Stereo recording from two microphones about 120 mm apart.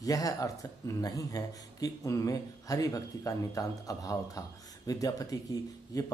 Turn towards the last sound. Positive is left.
turn(degrees=30)  # may be behind; listen again after turning